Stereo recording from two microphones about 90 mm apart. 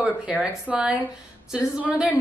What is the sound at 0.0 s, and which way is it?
A woman's voice, 15° right (ahead or behind).